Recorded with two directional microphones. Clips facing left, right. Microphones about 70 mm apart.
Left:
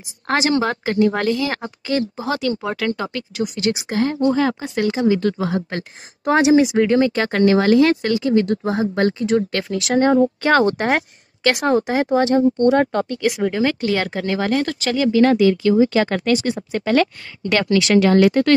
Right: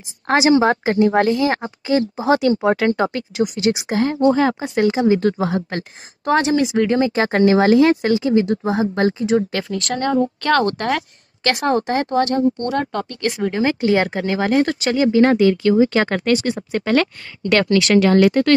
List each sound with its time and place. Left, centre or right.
0.3 s speech: centre
5.7 s speech: centre
7.2 s speech: right
8.5 s speech: centre
9.7 s speech: centre
9.9 s speech: left
11.6 s speech: centre
12.2 s speech: left
13.4 s speech: centre
13.7 s speech: right